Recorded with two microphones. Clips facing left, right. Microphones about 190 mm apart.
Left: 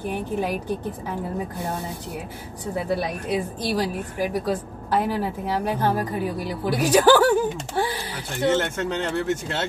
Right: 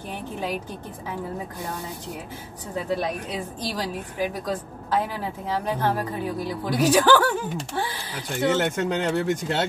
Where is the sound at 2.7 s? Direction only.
10° left (ahead or behind).